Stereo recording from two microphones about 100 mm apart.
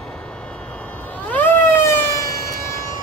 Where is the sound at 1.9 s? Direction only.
30° left (ahead or behind).